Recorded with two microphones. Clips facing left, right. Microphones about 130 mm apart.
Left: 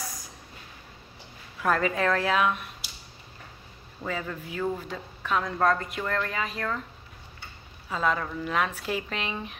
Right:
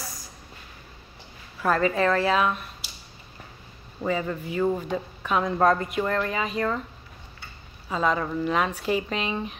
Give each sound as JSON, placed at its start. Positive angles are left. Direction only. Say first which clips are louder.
{"t": 1.6, "sound": "a woman's voice", "louder": "right 3 dB", "side_deg": 5}
{"t": 4.1, "sound": "speech", "louder": "right 6 dB", "side_deg": -10}
{"t": 5.4, "sound": "a woman's voice", "louder": "right 4 dB", "side_deg": -20}
{"t": 5.8, "sound": "speech", "louder": "right 4 dB", "side_deg": -10}
{"t": 7.9, "sound": "a woman's voice", "louder": "right 2 dB", "side_deg": 0}
{"t": 8.2, "sound": "speech", "louder": "right 5 dB", "side_deg": -10}
{"t": 8.5, "sound": "a woman's voice", "louder": "right 3 dB", "side_deg": 0}